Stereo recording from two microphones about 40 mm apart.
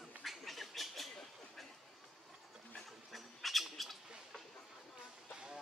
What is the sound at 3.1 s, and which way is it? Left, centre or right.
Bird, centre.